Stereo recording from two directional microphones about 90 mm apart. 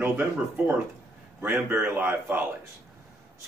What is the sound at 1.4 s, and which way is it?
A man's voice, 20° right (ahead or behind).